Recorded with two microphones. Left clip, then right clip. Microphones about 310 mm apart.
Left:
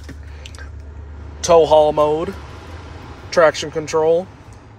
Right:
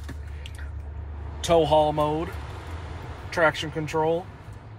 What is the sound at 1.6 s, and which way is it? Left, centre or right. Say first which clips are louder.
Speech: left 8 dB; left.